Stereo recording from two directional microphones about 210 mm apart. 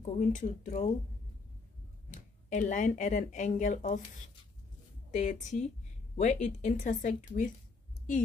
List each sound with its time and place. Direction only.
0.0 s speech: 35° left (ahead or behind)
2.0 s speech: 35° left (ahead or behind)